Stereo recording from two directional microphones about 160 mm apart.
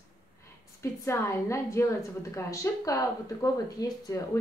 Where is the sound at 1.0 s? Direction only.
20° left (ahead or behind).